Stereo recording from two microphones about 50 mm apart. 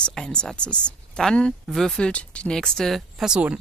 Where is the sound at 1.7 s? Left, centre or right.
Centre.